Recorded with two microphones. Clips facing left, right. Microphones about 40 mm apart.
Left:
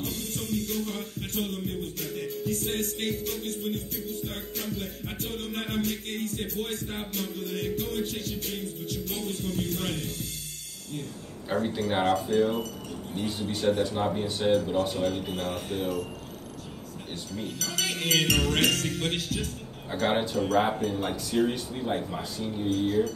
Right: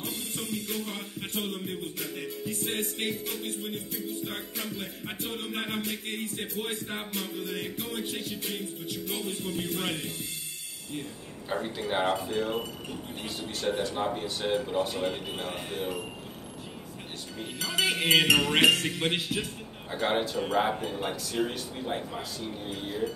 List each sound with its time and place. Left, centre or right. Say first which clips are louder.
0.0 s music: left 2 dB; centre
11.5 s speech: left 4 dB; centre
12.1 s music: left 5 dB; centre
13.1 s speech: left 8 dB; centre
15.0 s music: left 3 dB; centre
17.6 s music: right 5 dB; right
19.9 s speech: left 2 dB; centre
20.7 s speech: left 3 dB; centre
22.7 s music: left 14 dB; centre